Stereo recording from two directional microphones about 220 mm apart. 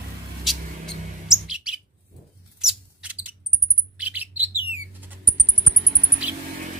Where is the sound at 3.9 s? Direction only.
5° right (ahead or behind).